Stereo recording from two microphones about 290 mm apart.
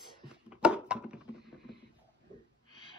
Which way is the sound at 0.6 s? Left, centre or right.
Centre.